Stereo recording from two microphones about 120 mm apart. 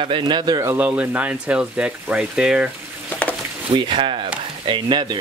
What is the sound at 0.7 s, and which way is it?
Speech, 10° right (ahead or behind).